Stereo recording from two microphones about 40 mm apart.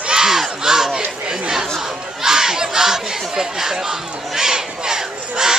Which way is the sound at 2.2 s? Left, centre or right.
Centre.